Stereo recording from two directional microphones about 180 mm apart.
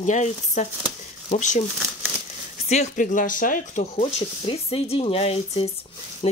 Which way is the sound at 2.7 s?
40° left (ahead or behind).